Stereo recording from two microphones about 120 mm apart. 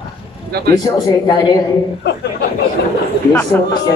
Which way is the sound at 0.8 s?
35° left (ahead or behind).